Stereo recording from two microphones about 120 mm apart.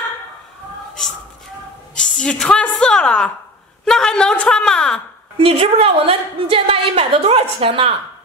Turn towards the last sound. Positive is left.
turn(degrees=-55)  # may be behind; listen again after turning